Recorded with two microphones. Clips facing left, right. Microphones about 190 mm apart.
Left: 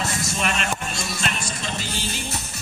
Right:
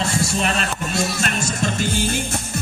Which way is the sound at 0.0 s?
30° right (ahead or behind).